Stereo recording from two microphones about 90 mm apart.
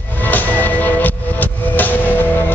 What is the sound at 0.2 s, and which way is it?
Music, 20° left (ahead or behind).